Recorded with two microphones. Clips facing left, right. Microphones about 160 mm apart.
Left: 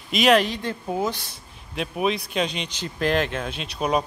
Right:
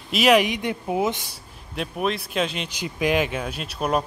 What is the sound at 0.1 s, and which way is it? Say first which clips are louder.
Speech: right 1 dB; 5° right (ahead or behind).